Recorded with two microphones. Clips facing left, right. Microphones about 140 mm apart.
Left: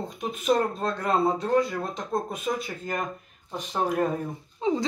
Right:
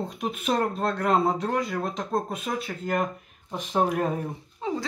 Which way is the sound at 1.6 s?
Centre (ahead or behind).